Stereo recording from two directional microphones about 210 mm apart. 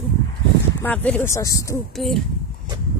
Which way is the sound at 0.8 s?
5° left (ahead or behind).